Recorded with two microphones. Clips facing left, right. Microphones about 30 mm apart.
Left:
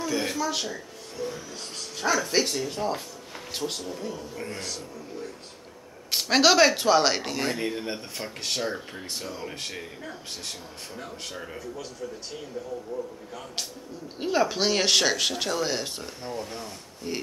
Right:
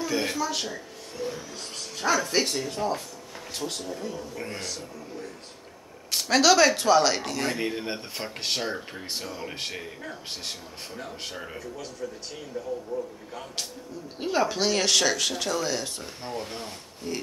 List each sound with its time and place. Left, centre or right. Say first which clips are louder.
0.0 s speech: even; centre
3.5 s speech: left 1 dB; centre
3.8 s speech: even; centre
6.3 s speech: even; centre
7.5 s speech: even; centre
9.1 s speech: right 1 dB; centre
11.1 s speech: even; centre
11.6 s speech: left 1 dB; centre
12.6 s speech: right 3 dB; centre
14.2 s speech: left 1 dB; centre
14.6 s speech: even; centre
16.2 s speech: right 1 dB; right
16.4 s speech: right 1 dB; right
17.1 s speech: even; centre